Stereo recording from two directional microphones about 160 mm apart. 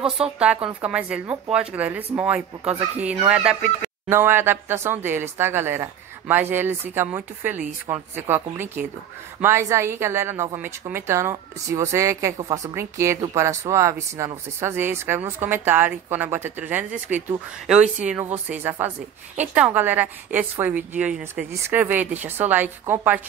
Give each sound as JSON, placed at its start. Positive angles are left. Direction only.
{"t": 0.0, "sound": "speech", "side_deg": -5}
{"t": 9.4, "sound": "speech", "side_deg": -15}